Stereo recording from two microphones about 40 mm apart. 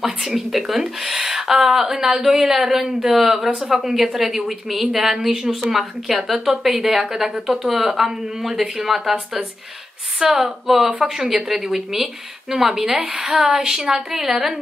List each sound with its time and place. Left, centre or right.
0.0 s speech: centre
1.7 s speech: centre
10.1 s speech: centre
13.0 s speech: right; by 14.6 s centre